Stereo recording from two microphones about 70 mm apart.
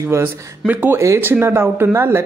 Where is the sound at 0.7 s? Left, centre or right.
Right.